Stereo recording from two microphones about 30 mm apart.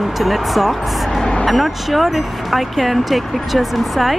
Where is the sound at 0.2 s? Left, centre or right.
Centre.